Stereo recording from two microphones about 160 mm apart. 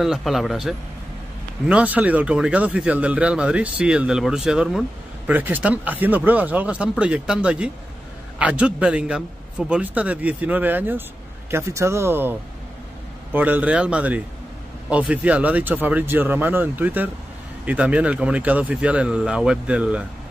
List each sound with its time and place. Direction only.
0.0 s speech: centre (ahead or behind)